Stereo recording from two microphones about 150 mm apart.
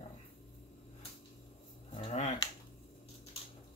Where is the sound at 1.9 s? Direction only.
45° left (ahead or behind).